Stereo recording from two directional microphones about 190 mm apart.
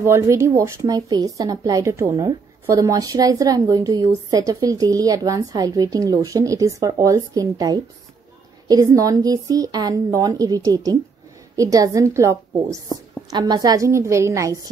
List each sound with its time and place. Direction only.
0.0 s a woman's voice: 15° right (ahead or behind)